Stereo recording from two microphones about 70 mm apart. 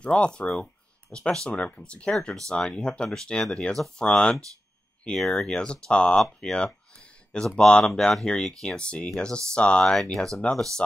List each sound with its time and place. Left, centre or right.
0.0 s speech: centre